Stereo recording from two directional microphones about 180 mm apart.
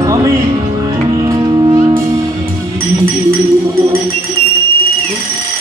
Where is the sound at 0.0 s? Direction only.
20° right (ahead or behind).